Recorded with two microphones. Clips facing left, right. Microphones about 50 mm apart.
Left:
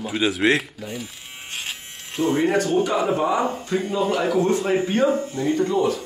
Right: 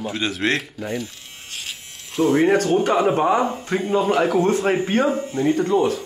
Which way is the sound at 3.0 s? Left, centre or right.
Right.